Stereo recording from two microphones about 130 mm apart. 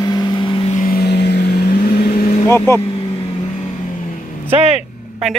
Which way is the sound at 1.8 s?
90° left.